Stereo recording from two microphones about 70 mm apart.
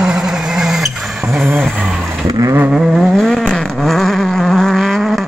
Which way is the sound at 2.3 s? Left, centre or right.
Right.